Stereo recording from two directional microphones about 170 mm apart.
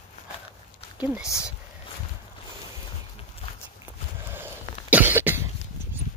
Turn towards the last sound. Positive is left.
turn(degrees=-10)  # may be behind; listen again after turning